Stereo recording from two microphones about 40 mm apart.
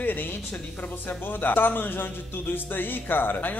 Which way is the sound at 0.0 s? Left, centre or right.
Left.